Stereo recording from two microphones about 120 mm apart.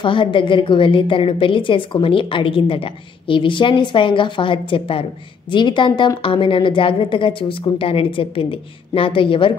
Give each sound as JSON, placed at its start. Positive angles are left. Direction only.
{"t": 0.0, "sound": "a woman's voice", "side_deg": 45}